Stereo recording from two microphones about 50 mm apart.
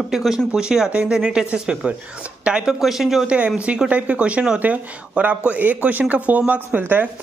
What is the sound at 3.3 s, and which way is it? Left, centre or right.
Speech, right.